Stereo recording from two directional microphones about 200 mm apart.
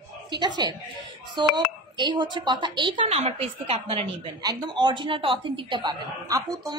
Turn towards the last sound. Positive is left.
turn(degrees=-20)  # may be behind; listen again after turning